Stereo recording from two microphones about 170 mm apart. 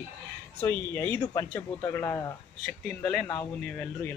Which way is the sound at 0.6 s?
10° left (ahead or behind).